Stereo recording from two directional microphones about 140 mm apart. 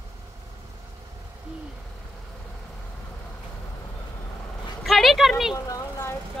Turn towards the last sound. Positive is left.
turn(degrees=20)  # may be behind; listen again after turning